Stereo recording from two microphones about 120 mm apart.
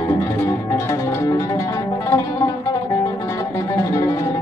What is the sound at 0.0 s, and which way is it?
Music, 25° left (ahead or behind).